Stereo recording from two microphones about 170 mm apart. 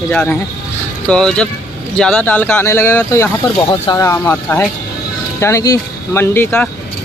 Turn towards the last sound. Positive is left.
turn(degrees=10)  # may be behind; listen again after turning